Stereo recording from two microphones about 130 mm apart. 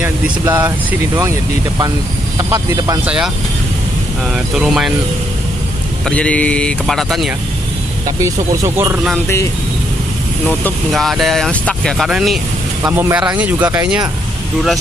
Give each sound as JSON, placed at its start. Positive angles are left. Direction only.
{"t": 0.5, "sound": "speech", "side_deg": -25}
{"t": 2.3, "sound": "speech", "side_deg": -25}
{"t": 4.6, "sound": "speech", "side_deg": -5}
{"t": 6.0, "sound": "speech", "side_deg": 10}
{"t": 8.2, "sound": "speech", "side_deg": -20}
{"t": 10.9, "sound": "speech", "side_deg": 0}
{"t": 12.8, "sound": "speech", "side_deg": -15}